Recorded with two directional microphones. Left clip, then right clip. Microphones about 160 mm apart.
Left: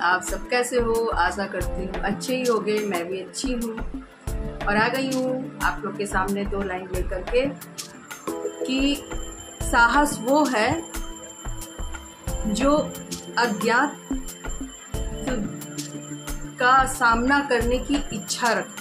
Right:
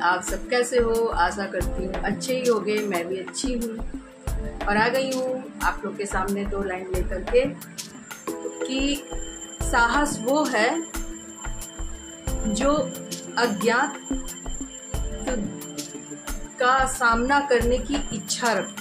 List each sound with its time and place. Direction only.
0.0 s speech: 10° left (ahead or behind)
2.3 s a woman's voice: 30° right (ahead or behind)
2.6 s a woman's voice: centre (ahead or behind)
5.0 s a woman's voice: 30° right (ahead or behind)
5.6 s speech: centre (ahead or behind)
8.3 s music: 5° left (ahead or behind)
9.6 s a woman's voice: 5° left (ahead or behind)
12.3 s music: 5° left (ahead or behind)
13.3 s speech: centre (ahead or behind)
14.9 s music: centre (ahead or behind)
15.7 s music: 30° right (ahead or behind)
16.3 s speech: 5° left (ahead or behind)